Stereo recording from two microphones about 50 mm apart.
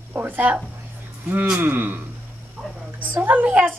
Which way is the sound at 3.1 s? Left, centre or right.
Right.